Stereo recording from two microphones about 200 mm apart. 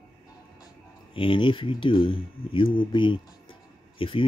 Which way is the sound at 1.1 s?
25° left (ahead or behind).